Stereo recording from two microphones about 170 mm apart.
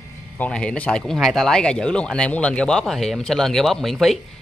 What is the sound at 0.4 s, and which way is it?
Speech, 5° left (ahead or behind).